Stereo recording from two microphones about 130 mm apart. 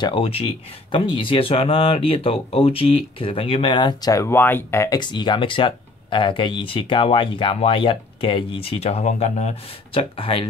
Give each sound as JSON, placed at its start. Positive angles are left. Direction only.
{"t": 0.0, "sound": "speech", "side_deg": 45}
{"t": 9.9, "sound": "speech", "side_deg": 45}